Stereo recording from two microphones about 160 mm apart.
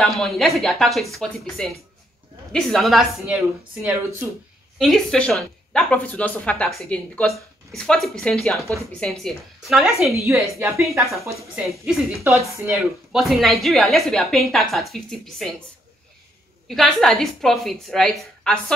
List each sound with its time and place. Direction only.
0.0 s a woman's voice: centre (ahead or behind)
4.7 s a woman's voice: centre (ahead or behind)
10.1 s a woman's voice: 20° right (ahead or behind)
10.5 s a woman's voice: centre (ahead or behind)
12.2 s a woman's voice: 15° right (ahead or behind)
13.1 s a woman's voice: centre (ahead or behind)
16.6 s a woman's voice: centre (ahead or behind)